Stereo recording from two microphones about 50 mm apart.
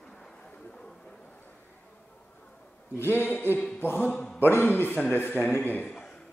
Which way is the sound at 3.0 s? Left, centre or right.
Left.